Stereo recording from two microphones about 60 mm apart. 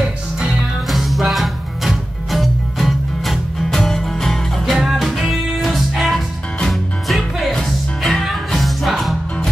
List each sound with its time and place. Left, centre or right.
0.0 s music: centre
0.8 s music: centre
4.7 s music: centre